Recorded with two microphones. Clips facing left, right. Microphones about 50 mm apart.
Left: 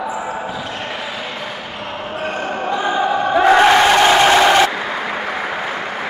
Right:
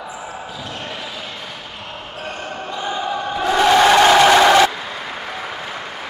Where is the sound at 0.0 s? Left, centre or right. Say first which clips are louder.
Left 8 dB; left.